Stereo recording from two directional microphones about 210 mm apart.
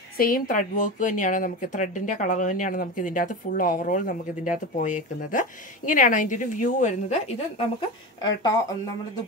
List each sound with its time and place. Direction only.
0.2 s speech: 40° left (ahead or behind)
8.2 s speech: 20° left (ahead or behind)